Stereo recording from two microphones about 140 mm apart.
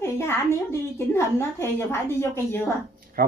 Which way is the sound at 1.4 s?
20° left (ahead or behind).